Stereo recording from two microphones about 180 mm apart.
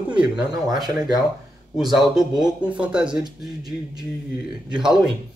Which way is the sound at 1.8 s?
Centre (ahead or behind).